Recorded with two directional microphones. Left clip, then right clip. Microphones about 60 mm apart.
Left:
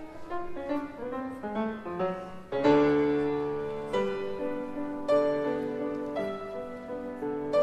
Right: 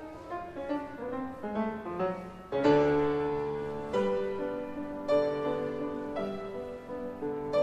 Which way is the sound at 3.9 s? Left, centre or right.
Left.